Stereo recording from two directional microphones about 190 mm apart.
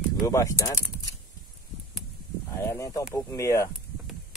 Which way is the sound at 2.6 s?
15° left (ahead or behind).